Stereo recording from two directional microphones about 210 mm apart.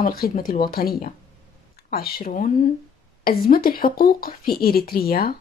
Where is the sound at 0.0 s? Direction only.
45° left (ahead or behind).